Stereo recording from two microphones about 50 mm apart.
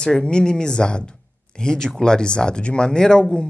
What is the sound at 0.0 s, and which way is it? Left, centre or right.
Speech, centre.